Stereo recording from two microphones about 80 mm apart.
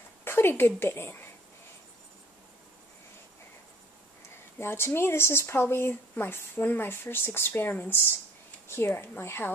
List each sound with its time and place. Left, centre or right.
0.2 s a woman's voice: left
4.6 s a woman's voice: left